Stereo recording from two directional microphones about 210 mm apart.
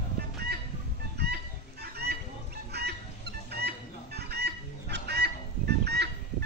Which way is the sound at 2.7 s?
50° right (ahead or behind).